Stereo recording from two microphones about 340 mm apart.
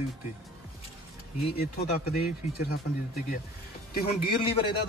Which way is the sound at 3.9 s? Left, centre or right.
Centre.